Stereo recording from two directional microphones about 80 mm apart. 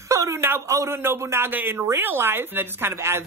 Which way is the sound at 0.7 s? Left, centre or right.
Right.